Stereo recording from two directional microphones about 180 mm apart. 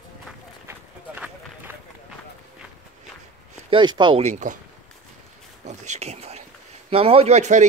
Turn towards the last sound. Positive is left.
turn(degrees=-40)  # may be behind; listen again after turning